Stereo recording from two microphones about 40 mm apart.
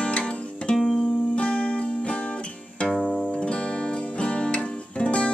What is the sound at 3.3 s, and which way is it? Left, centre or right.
Music, left.